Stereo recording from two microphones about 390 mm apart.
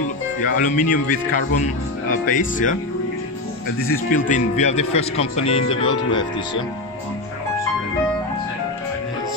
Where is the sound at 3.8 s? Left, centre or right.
Left.